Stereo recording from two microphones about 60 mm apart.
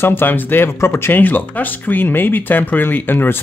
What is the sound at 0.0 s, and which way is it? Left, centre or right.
Speech, left.